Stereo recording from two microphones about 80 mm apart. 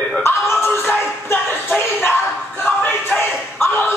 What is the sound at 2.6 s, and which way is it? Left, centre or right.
Music, centre.